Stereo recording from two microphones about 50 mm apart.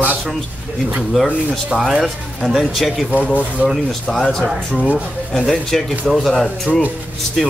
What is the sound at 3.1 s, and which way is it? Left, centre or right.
Speech, right.